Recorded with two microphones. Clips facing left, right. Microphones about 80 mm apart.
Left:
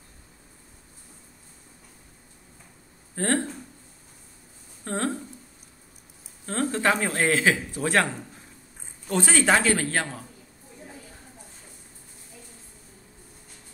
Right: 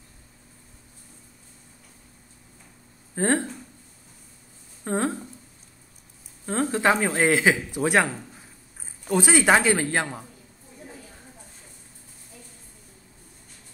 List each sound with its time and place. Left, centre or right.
3.2 s speech: centre
4.8 s speech: centre
6.4 s speech: centre